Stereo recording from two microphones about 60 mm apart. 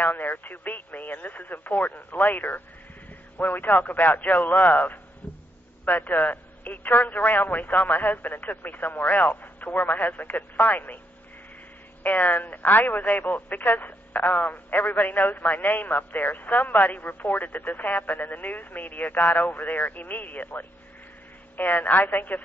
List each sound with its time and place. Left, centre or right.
0.0 s a man's voice: left
12.0 s speech: left